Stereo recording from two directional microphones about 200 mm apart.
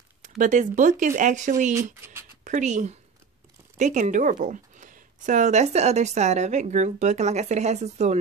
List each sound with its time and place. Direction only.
0.2 s speech: 40° right (ahead or behind)